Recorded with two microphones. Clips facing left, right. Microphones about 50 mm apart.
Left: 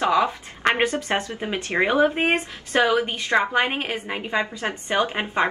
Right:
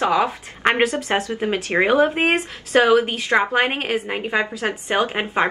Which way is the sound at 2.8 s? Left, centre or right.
Right.